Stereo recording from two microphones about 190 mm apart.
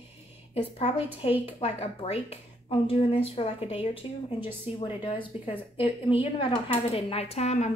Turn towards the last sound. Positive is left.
turn(degrees=35)  # may be behind; listen again after turning